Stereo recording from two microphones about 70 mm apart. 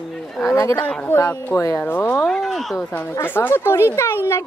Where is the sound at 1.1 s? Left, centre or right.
Left.